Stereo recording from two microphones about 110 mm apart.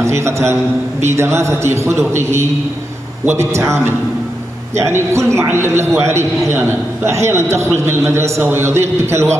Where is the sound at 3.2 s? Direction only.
25° right (ahead or behind).